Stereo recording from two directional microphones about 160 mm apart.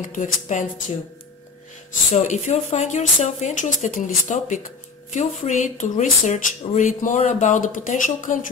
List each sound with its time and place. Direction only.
0.1 s speech: 50° left (ahead or behind)
2.1 s speech: 45° left (ahead or behind)